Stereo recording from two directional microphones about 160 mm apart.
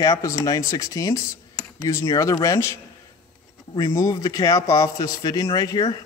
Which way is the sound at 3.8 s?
20° left (ahead or behind).